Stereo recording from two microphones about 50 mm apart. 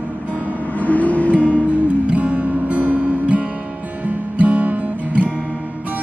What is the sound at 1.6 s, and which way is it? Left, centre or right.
Music, right.